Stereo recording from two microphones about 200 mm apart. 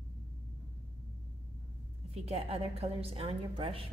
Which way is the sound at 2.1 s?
30° right (ahead or behind).